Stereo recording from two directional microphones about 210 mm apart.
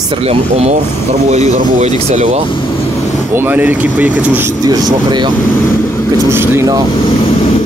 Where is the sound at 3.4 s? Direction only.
10° right (ahead or behind).